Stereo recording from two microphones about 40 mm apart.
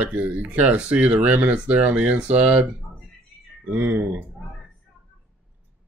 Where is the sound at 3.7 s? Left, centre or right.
Right.